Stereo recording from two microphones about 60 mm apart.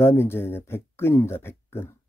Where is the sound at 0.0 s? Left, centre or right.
Left.